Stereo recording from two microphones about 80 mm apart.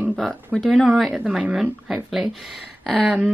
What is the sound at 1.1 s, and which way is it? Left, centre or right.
A woman's voice, centre.